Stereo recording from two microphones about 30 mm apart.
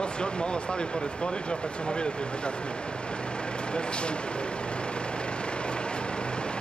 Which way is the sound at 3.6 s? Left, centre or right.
Left.